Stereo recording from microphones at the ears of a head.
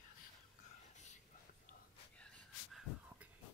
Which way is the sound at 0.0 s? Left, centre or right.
Left.